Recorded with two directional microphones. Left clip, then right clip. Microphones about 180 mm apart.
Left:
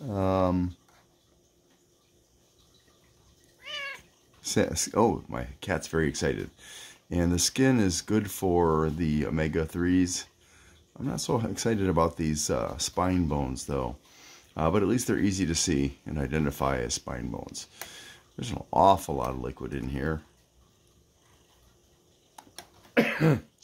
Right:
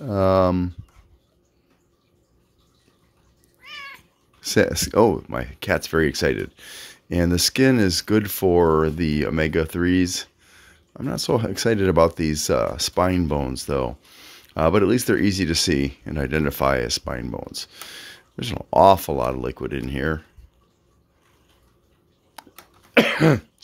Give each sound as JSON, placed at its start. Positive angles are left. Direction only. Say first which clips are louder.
{"t": 0.0, "sound": "speech", "louder": "right 9 dB", "side_deg": -35}
{"t": 3.6, "sound": "cat", "louder": "left 1 dB", "side_deg": 30}
{"t": 4.4, "sound": "speech", "louder": "right 8 dB", "side_deg": -35}
{"t": 22.4, "sound": "a sound", "louder": "right 7 dB", "side_deg": -35}
{"t": 22.9, "sound": "cough", "louder": "right 8 dB", "side_deg": -45}